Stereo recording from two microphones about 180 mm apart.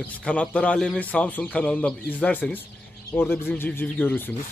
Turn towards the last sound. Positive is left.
turn(degrees=10)  # may be behind; listen again after turning